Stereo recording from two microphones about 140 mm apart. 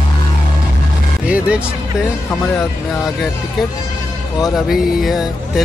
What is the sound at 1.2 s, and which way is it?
Music, 10° right (ahead or behind).